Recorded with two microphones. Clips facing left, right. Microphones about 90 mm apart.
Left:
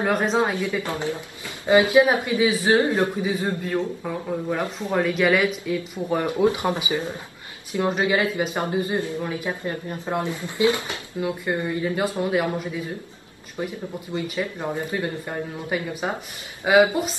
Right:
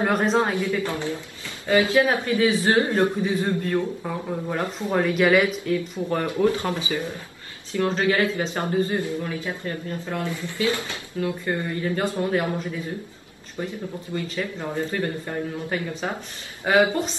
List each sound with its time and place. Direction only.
0.0 s speech: centre (ahead or behind)
0.4 s speech: 15° left (ahead or behind)
4.0 s speech: centre (ahead or behind)
5.9 s speech: 15° left (ahead or behind)